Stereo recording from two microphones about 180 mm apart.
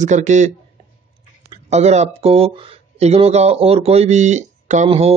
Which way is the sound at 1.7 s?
40° right (ahead or behind).